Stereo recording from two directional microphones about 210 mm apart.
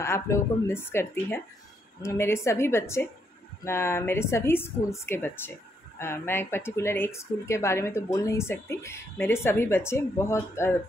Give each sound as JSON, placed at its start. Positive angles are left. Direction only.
{"t": 0.0, "sound": "a woman's voice", "side_deg": 10}